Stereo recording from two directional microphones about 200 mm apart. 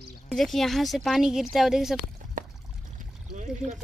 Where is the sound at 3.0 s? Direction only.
40° right (ahead or behind).